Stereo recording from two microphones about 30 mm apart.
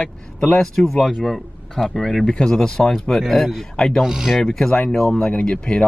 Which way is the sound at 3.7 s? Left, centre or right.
Centre.